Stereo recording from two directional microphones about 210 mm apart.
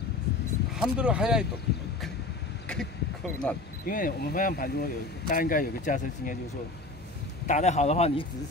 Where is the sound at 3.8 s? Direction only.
40° left (ahead or behind).